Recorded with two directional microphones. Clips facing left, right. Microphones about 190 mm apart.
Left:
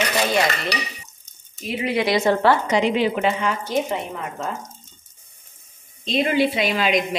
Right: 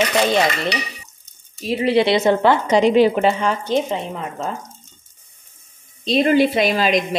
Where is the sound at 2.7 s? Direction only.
35° right (ahead or behind).